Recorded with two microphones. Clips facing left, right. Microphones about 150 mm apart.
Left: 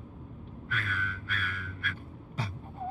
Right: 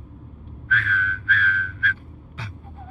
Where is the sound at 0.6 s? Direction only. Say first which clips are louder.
Right 10 dB; 35° left (ahead or behind).